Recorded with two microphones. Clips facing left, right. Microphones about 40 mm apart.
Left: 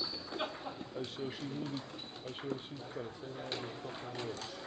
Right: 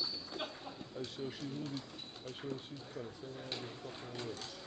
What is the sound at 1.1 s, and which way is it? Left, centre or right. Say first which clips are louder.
Speech: left 1 dB; left.